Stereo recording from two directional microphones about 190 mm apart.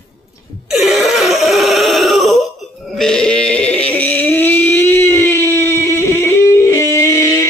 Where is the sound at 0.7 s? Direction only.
Centre (ahead or behind).